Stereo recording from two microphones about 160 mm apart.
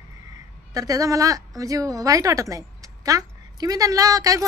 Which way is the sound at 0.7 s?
20° right (ahead or behind).